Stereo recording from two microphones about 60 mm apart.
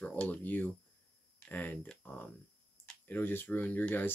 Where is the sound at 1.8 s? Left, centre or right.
Centre.